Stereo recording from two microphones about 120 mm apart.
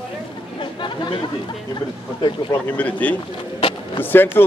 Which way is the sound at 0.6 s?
45° left (ahead or behind).